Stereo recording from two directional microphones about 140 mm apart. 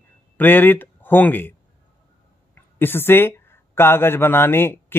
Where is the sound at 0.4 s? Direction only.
15° left (ahead or behind).